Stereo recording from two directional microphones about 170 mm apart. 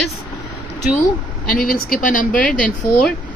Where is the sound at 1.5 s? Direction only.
55° left (ahead or behind).